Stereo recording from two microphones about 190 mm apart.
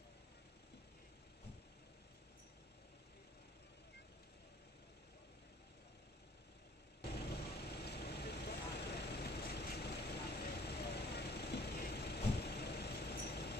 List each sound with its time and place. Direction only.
7.0 s vehicle: 60° left (ahead or behind)